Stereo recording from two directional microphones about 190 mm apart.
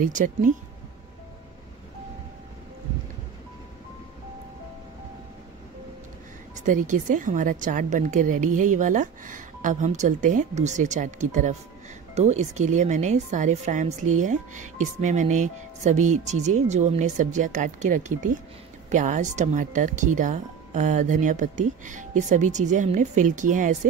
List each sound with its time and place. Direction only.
0.0 s speech: 40° right (ahead or behind)
6.6 s speech: 45° right (ahead or behind)